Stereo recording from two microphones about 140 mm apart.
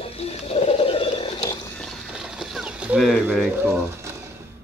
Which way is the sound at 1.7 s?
Centre (ahead or behind).